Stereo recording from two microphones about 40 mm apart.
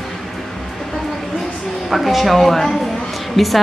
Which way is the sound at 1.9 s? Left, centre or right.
Centre.